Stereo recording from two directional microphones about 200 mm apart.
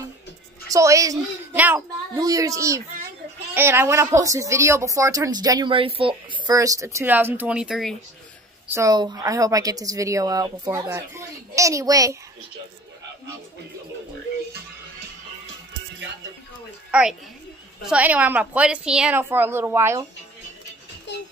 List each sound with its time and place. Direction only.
0.7 s speech: 15° right (ahead or behind)
8.6 s speech: 15° right (ahead or behind)
16.9 s a woman's voice: 5° right (ahead or behind)
21.1 s music: 60° left (ahead or behind)